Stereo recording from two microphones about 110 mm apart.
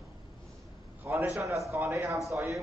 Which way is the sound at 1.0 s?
25° right (ahead or behind).